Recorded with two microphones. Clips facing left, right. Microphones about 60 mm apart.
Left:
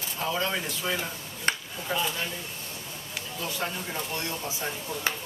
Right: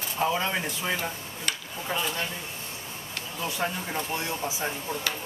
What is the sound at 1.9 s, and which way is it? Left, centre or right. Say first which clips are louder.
Speech: left 1 dB; centre.